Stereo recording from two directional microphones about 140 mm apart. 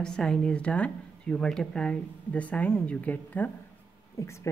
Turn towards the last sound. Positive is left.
turn(degrees=20)  # may be behind; listen again after turning